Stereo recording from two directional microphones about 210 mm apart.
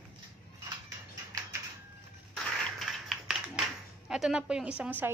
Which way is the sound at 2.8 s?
Centre (ahead or behind).